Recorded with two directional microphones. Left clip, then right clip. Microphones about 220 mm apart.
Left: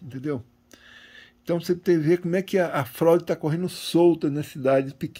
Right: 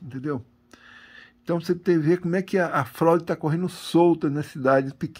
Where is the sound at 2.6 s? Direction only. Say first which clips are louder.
Right 1 dB; 40° right (ahead or behind).